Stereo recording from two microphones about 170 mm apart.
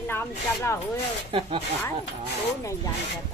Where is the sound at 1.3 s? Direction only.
30° right (ahead or behind).